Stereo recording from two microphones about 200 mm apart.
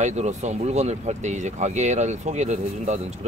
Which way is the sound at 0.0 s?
35° right (ahead or behind).